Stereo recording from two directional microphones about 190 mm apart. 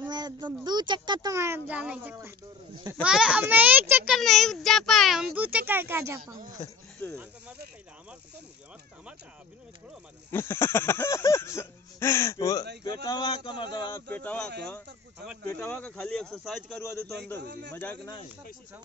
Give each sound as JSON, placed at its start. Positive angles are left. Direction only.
{"t": 0.0, "sound": "a sound", "side_deg": -20}
{"t": 2.9, "sound": "a child's voice", "side_deg": -5}
{"t": 4.1, "sound": "a child's voice", "side_deg": 0}
{"t": 10.3, "sound": "speech", "side_deg": 10}
{"t": 14.0, "sound": "a child's voice", "side_deg": 10}
{"t": 17.7, "sound": "speech", "side_deg": 10}